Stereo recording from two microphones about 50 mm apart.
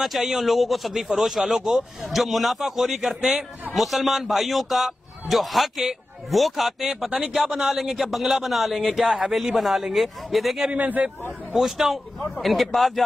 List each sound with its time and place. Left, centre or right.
0.0 s speech: centre
10.7 s a man's voice: right
11.5 s a man's voice: centre